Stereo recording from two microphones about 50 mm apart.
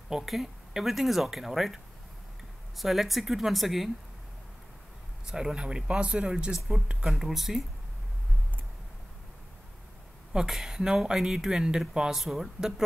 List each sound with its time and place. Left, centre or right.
0.1 s speech: centre
2.8 s speech: centre
5.2 s speech: centre
7.1 s speech: centre
10.3 s speech: centre